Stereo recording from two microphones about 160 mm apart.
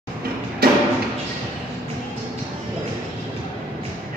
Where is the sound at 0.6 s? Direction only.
70° right (ahead or behind).